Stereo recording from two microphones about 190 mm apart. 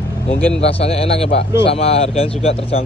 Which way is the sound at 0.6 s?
35° left (ahead or behind).